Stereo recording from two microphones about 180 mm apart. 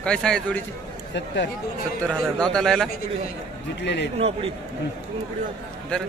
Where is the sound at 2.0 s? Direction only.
5° left (ahead or behind).